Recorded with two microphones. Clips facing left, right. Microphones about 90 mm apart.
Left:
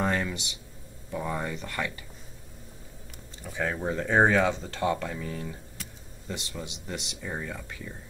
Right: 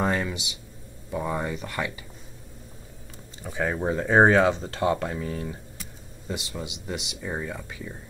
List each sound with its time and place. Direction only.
0.0 s speech: 10° right (ahead or behind)
3.4 s speech: 15° right (ahead or behind)
4.2 s speech: 30° right (ahead or behind)
6.2 s speech: 10° right (ahead or behind)